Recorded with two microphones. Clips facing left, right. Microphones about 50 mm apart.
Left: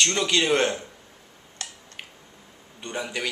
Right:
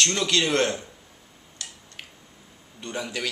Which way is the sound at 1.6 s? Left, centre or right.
Left.